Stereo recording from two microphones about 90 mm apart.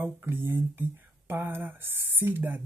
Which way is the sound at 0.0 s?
25° right (ahead or behind).